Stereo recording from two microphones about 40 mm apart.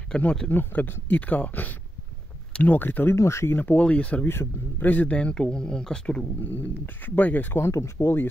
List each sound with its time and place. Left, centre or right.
0.1 s speech: centre
0.5 s speech: left
3.8 s speech: left
4.3 s a man's voice: left
5.0 s speech: left
5.3 s speech: centre
6.4 s speech: left
7.5 s speech: left